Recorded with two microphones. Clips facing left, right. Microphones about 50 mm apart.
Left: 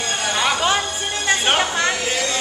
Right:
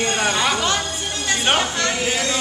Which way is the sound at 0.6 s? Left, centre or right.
Centre.